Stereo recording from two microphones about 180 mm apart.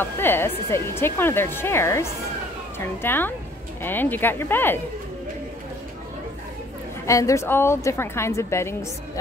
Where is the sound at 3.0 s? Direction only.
10° left (ahead or behind).